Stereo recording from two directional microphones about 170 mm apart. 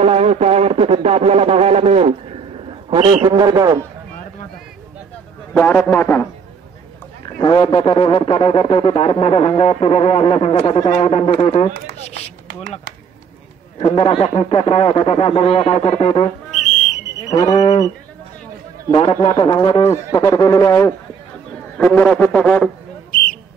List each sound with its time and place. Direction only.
0.0 s speech: 35° right (ahead or behind)
3.3 s speech: 25° right (ahead or behind)
5.5 s speech: 10° left (ahead or behind)
7.2 s a man's voice: 25° left (ahead or behind)
13.7 s a man's voice: 30° left (ahead or behind)
17.3 s livestock: 25° left (ahead or behind)
18.9 s a man's voice: 30° left (ahead or behind)
19.9 s speech: 20° left (ahead or behind)
21.7 s speech: 5° left (ahead or behind)